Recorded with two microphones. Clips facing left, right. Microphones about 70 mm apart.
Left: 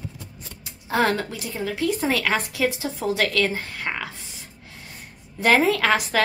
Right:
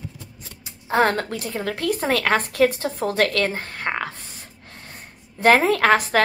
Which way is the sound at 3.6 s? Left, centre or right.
Right.